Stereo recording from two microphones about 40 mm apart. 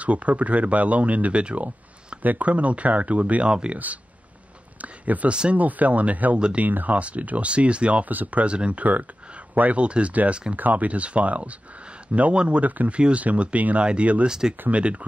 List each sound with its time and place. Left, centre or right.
0.0 s speech: right
1.3 s speech: right
2.2 s speech: right
3.4 s speech: right
3.7 s speech: right
6.3 s speech: right
6.6 s speech: right
8.0 s speech: right
8.5 s speech: right
9.5 s speech: right
9.8 s speech: right
10.5 s speech: right
14.2 s speech: centre
14.7 s speech: right